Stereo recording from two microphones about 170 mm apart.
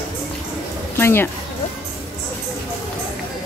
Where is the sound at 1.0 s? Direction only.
15° left (ahead or behind).